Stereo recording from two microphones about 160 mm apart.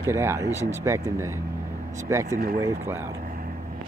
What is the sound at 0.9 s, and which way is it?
Speech, 15° right (ahead or behind).